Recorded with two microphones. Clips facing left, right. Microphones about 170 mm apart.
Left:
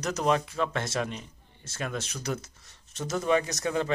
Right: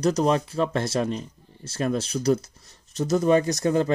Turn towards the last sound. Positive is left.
turn(degrees=-35)  # may be behind; listen again after turning